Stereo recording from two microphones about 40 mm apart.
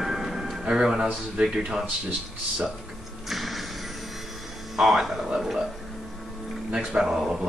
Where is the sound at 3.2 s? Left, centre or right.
Centre.